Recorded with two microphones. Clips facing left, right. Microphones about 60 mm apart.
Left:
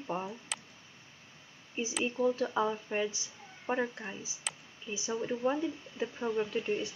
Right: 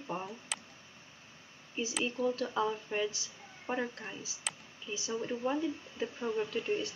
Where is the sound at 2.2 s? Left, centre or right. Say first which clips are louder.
Left 3 dB; centre.